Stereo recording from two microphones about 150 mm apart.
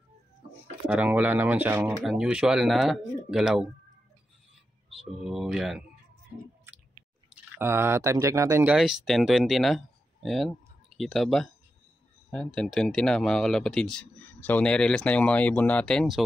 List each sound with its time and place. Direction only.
0.8 s speech: 10° right (ahead or behind)
5.2 s speech: centre (ahead or behind)
7.3 s speech: 15° right (ahead or behind)
8.7 s speech: centre (ahead or behind)
10.2 s a sound: centre (ahead or behind)
11.1 s speech: centre (ahead or behind)